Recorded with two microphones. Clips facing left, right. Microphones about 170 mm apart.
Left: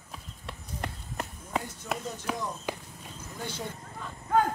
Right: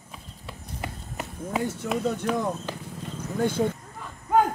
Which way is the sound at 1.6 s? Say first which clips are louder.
Right 9 dB; 75° right (ahead or behind).